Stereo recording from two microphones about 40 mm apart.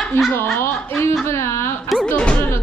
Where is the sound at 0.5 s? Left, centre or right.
Left.